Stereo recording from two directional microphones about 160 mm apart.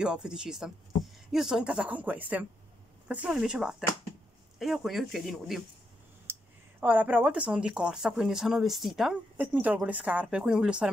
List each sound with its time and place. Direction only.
0.0 s speech: 5° right (ahead or behind)
6.8 s speech: 10° right (ahead or behind)